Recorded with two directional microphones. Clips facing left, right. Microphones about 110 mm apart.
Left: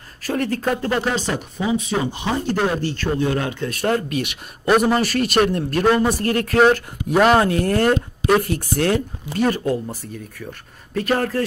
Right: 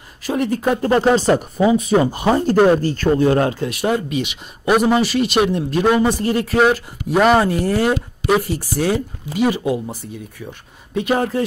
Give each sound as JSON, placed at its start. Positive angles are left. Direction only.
{"t": 0.3, "sound": "speech", "side_deg": -10}
{"t": 0.8, "sound": "speech", "side_deg": -35}
{"t": 3.6, "sound": "speech", "side_deg": -10}
{"t": 5.0, "sound": "speech", "side_deg": 50}
{"t": 5.8, "sound": "speech", "side_deg": -10}